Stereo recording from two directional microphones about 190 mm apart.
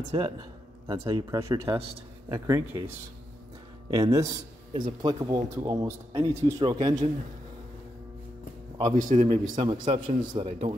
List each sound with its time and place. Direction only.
0.8 s a man's voice: 20° right (ahead or behind)
3.9 s a man's voice: 15° right (ahead or behind)
8.9 s a man's voice: 40° right (ahead or behind)